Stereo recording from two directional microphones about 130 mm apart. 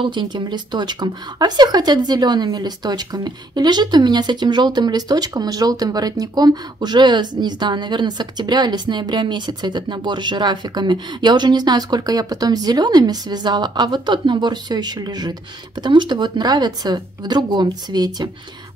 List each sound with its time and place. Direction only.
0.0 s speech: 35° right (ahead or behind)